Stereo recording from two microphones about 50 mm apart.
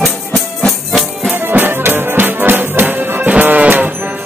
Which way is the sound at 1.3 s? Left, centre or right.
Right.